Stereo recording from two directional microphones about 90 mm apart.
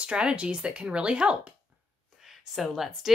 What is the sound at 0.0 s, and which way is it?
Speech, 10° right (ahead or behind).